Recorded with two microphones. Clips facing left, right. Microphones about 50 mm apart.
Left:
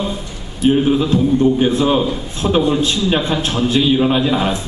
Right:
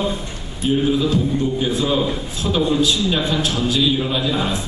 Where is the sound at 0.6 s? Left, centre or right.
Left.